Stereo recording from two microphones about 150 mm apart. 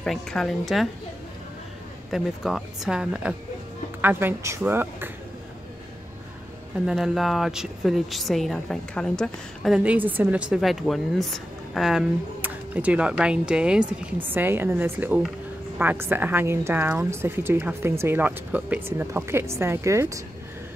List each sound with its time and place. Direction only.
0.0 s speech: 5° left (ahead or behind)
2.0 s a woman's voice: centre (ahead or behind)
6.9 s speech: centre (ahead or behind)
9.8 s speech: 10° right (ahead or behind)
12.4 s a woman's voice: 10° right (ahead or behind)